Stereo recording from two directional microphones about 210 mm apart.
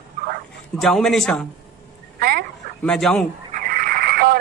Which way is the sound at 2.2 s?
45° right (ahead or behind).